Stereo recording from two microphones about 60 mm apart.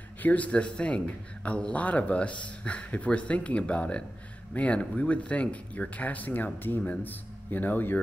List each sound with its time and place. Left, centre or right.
0.2 s speech: left